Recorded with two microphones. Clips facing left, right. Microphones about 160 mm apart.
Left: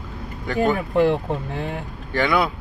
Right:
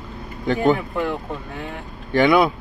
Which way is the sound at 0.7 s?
40° left (ahead or behind).